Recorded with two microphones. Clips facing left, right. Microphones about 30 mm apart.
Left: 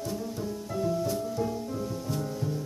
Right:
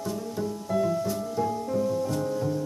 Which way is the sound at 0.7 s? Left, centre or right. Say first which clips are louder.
Right 5 dB; right.